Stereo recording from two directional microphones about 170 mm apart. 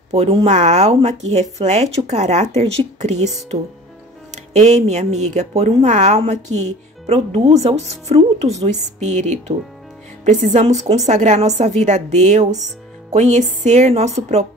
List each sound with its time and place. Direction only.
0.1 s speech: 35° right (ahead or behind)
4.6 s a woman's voice: 40° right (ahead or behind)